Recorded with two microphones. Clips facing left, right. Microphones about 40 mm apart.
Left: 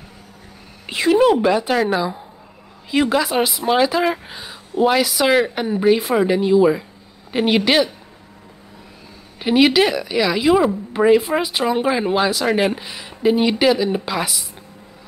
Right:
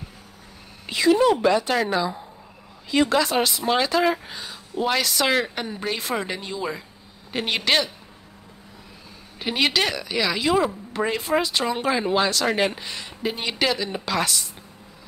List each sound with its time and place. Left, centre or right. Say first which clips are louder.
0.8 s speech: left 1 dB; left
1.3 s a woman's voice: left 3 dB; centre
9.4 s a woman's voice: left 8 dB; centre